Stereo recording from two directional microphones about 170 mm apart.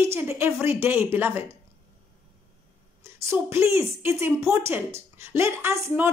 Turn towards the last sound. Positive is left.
turn(degrees=-15)  # may be behind; listen again after turning